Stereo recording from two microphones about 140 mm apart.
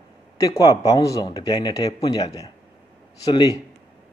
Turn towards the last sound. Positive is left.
turn(degrees=30)  # may be behind; listen again after turning